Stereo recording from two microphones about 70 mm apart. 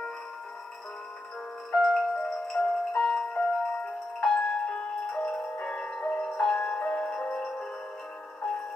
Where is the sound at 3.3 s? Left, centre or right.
Centre.